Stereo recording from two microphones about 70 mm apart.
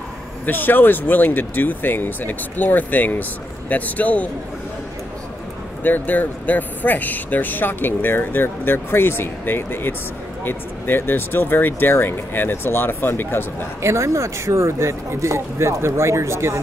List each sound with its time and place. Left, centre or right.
0.5 s speech: left
5.9 s speech: left
13.8 s speech: right